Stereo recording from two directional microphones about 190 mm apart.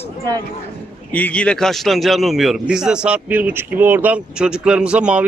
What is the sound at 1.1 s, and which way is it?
A man's voice, 5° left (ahead or behind).